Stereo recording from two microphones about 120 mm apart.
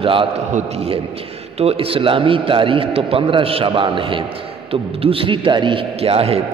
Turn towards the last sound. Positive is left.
turn(degrees=-55)  # may be behind; listen again after turning